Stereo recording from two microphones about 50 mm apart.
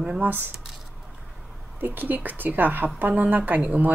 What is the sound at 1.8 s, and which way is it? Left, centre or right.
A woman's voice, right.